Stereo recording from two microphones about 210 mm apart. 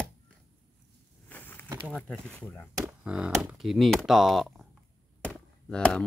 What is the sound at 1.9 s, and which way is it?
Speech, centre (ahead or behind).